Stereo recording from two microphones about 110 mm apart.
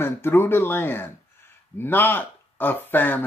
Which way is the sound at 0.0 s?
20° left (ahead or behind).